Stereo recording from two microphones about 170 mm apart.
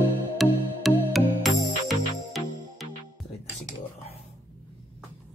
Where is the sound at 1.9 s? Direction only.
Centre (ahead or behind).